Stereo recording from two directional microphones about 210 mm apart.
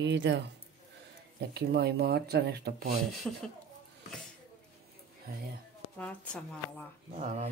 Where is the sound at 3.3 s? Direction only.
5° left (ahead or behind).